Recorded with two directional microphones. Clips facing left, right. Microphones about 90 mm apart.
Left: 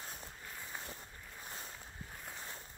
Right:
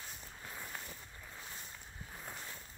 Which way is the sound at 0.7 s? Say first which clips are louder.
Left 1 dB; 15° left (ahead or behind).